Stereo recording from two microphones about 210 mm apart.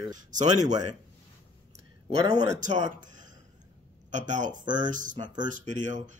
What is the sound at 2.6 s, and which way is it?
Speech, 35° right (ahead or behind).